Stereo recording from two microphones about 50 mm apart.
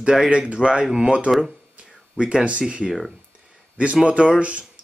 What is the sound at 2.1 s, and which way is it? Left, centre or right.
Speech, right.